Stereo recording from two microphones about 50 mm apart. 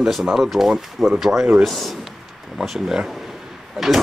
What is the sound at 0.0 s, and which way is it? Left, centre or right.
Speech, centre.